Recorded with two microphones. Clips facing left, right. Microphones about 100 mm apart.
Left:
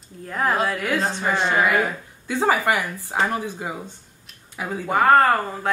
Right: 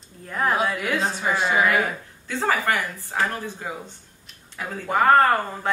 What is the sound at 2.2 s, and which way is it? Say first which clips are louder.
Speech: left 3 dB; 15° left (ahead or behind).